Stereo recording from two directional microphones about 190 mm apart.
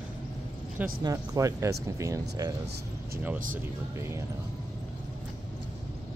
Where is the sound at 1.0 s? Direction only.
20° right (ahead or behind).